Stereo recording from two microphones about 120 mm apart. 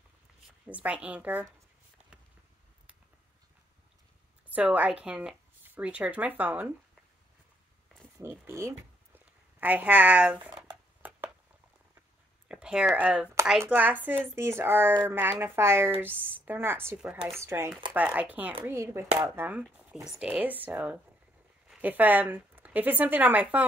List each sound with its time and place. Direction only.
0.7 s speech: 10° right (ahead or behind)
4.6 s speech: 10° right (ahead or behind)
8.2 s speech: 25° right (ahead or behind)
11.0 s a sound: 10° right (ahead or behind)
12.4 s a sound: 5° right (ahead or behind)
13.0 s speech: 10° right (ahead or behind)
19.6 s speech: 5° right (ahead or behind)